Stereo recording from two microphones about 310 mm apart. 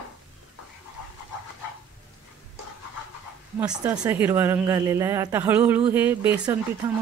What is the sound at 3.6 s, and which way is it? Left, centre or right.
Speech, centre.